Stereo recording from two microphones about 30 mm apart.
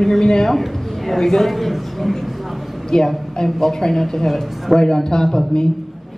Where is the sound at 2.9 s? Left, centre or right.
Centre.